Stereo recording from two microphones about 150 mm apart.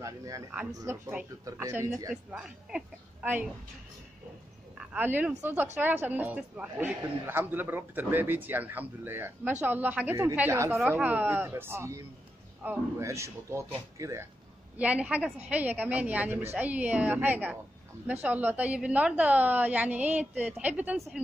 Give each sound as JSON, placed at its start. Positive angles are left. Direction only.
{"t": 0.0, "sound": "a man's voice", "side_deg": -20}
{"t": 2.3, "sound": "a woman's voice", "side_deg": -5}
{"t": 4.7, "sound": "a woman's voice", "side_deg": -10}
{"t": 14.8, "sound": "a woman's voice", "side_deg": -10}